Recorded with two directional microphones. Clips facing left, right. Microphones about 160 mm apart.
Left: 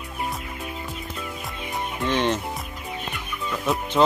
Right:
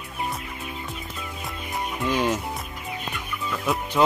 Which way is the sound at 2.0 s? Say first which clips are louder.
Left 1 dB; 5° right (ahead or behind).